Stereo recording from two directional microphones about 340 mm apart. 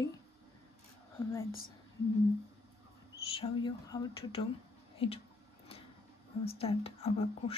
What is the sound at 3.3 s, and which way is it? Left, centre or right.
A woman's voice, centre.